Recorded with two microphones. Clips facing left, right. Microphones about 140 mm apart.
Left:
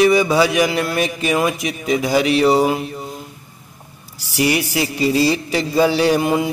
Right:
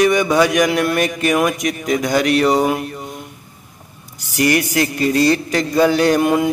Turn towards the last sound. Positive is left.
turn(degrees=5)  # may be behind; listen again after turning